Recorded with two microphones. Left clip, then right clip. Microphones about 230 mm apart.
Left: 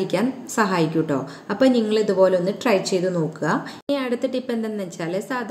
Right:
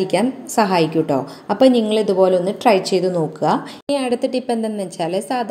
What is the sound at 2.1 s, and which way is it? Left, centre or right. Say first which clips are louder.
Speech: right 2 dB; centre.